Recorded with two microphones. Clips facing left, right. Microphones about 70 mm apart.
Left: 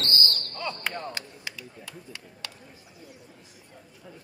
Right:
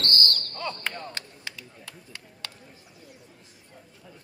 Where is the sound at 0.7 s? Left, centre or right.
Centre.